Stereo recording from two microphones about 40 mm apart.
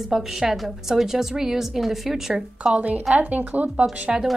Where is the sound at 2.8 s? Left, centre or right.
Right.